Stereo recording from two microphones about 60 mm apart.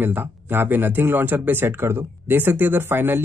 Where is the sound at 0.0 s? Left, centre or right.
Right.